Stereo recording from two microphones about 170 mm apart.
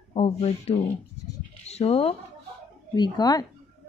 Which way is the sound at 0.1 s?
40° left (ahead or behind).